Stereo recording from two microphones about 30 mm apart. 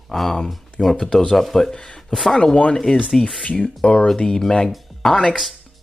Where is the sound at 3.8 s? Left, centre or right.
Left.